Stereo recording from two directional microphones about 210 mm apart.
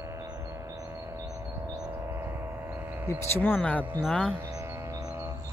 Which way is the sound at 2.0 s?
10° right (ahead or behind).